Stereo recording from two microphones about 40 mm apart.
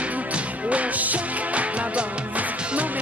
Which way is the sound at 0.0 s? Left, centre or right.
Right.